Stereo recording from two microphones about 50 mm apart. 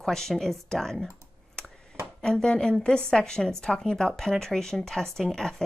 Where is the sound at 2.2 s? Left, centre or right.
Centre.